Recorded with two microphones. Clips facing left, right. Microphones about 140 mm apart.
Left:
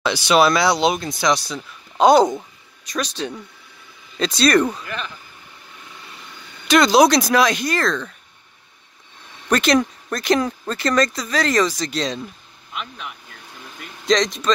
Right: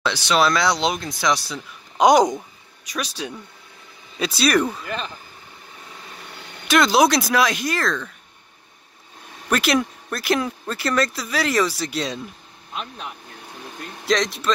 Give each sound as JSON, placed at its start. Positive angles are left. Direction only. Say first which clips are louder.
{"t": 0.0, "sound": "speech", "louder": "left 4 dB", "side_deg": 10}
{"t": 2.0, "sound": "speech", "louder": "left 2 dB", "side_deg": -15}
{"t": 6.7, "sound": "speech", "louder": "left 3 dB", "side_deg": 0}
{"t": 9.5, "sound": "speech", "louder": "left 3 dB", "side_deg": -5}
{"t": 12.7, "sound": "speech", "louder": "even", "side_deg": -35}
{"t": 14.0, "sound": "speech", "louder": "left 3 dB", "side_deg": -5}